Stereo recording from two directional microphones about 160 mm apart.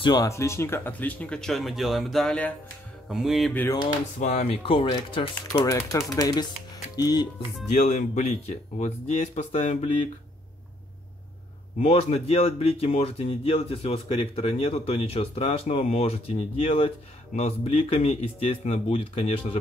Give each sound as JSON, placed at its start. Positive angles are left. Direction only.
{"t": 0.0, "sound": "speech", "side_deg": 25}
{"t": 3.1, "sound": "music", "side_deg": 0}
{"t": 4.2, "sound": "speech", "side_deg": 50}
{"t": 5.7, "sound": "speech", "side_deg": 20}
{"t": 7.7, "sound": "speech", "side_deg": 45}
{"t": 11.8, "sound": "speech", "side_deg": 40}